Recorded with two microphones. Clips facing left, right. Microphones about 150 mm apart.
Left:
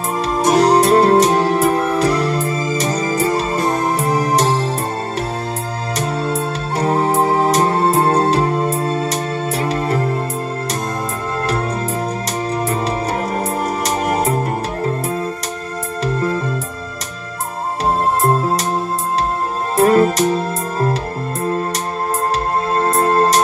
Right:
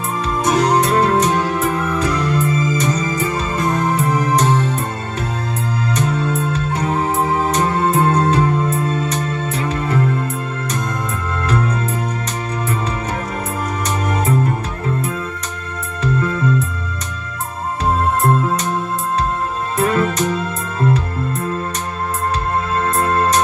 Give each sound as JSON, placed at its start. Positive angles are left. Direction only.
{"t": 0.2, "sound": "music", "side_deg": 35}
{"t": 5.9, "sound": "music", "side_deg": 35}
{"t": 11.4, "sound": "music", "side_deg": 35}
{"t": 13.8, "sound": "music", "side_deg": 35}
{"t": 16.2, "sound": "music", "side_deg": 35}
{"t": 18.2, "sound": "music", "side_deg": 30}
{"t": 19.8, "sound": "music", "side_deg": 35}
{"t": 22.8, "sound": "music", "side_deg": 35}